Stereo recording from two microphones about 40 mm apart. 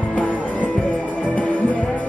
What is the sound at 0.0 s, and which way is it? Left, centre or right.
Music, left.